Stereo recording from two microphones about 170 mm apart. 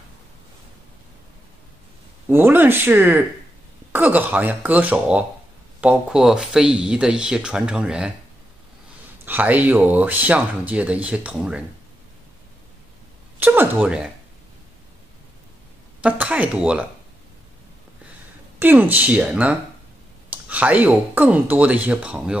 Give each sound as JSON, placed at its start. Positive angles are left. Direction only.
{"t": 2.2, "sound": "speech", "side_deg": -10}
{"t": 9.2, "sound": "speech", "side_deg": -10}
{"t": 13.4, "sound": "speech", "side_deg": -10}
{"t": 16.0, "sound": "speech", "side_deg": -10}
{"t": 18.6, "sound": "speech", "side_deg": -10}